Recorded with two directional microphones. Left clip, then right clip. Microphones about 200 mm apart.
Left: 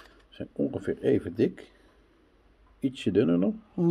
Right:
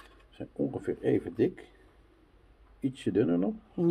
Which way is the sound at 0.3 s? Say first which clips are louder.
Left 3 dB; 50° left (ahead or behind).